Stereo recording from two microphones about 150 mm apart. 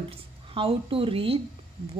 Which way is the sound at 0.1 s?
40° right (ahead or behind).